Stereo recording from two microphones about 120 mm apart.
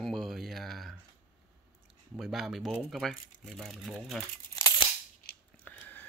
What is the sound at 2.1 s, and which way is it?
Speech, centre (ahead or behind).